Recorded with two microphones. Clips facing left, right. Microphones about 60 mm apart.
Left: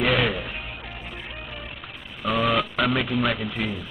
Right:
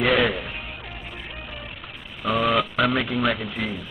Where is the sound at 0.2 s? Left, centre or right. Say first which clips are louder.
Right 2 dB; centre.